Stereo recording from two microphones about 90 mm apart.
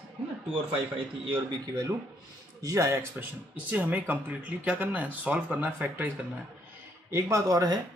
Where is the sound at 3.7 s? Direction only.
20° right (ahead or behind).